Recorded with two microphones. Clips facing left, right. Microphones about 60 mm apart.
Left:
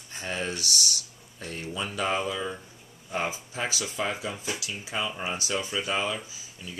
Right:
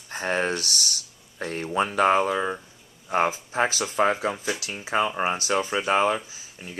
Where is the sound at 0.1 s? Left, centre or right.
Right.